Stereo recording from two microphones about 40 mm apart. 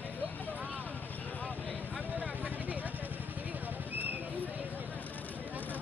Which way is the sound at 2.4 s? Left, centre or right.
Right.